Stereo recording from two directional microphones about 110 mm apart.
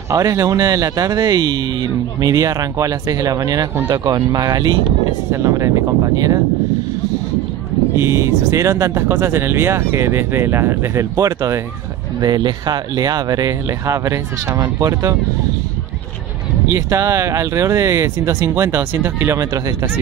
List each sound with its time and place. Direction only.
0.1 s speech: 30° right (ahead or behind)
8.1 s speech: 30° right (ahead or behind)
12.2 s speech: 40° right (ahead or behind)
16.7 s speech: 25° right (ahead or behind)